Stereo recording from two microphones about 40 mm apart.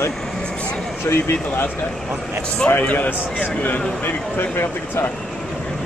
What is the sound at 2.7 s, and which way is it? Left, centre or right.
Speech, left.